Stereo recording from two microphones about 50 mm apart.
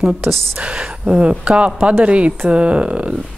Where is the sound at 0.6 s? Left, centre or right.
Right.